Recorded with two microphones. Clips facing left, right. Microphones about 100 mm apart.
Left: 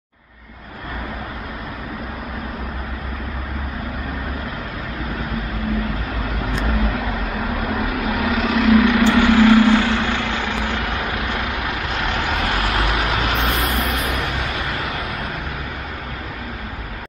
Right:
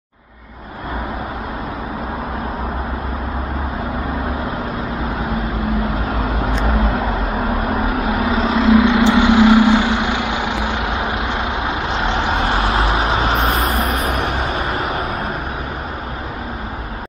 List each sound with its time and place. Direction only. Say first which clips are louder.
6.0 s vehicle: right 5 dB; 30° right (ahead or behind)